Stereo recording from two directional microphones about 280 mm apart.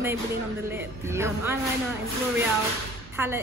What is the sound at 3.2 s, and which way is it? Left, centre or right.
Speech, centre.